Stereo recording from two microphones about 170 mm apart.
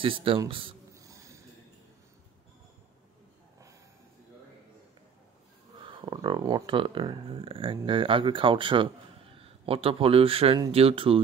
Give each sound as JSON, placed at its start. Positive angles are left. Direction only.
{"t": 0.0, "sound": "speech", "side_deg": -30}
{"t": 0.9, "sound": "a sound", "side_deg": -20}
{"t": 5.9, "sound": "speech", "side_deg": -30}